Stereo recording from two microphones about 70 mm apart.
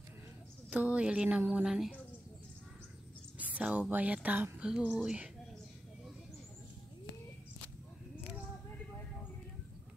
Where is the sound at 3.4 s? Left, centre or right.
Centre.